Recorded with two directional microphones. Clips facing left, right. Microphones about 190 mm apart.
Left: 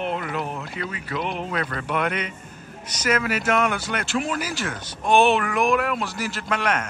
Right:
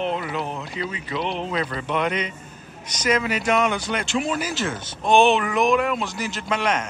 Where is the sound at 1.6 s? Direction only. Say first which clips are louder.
Right 1 dB; 10° right (ahead or behind).